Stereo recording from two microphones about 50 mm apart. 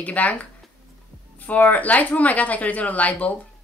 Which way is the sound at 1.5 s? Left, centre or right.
Left.